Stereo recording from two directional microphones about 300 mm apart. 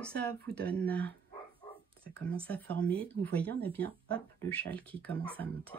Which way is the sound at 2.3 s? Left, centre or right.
Centre.